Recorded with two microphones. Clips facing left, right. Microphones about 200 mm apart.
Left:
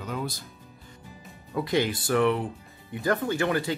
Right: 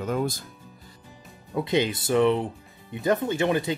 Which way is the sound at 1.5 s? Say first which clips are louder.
Right 1 dB; 20° right (ahead or behind).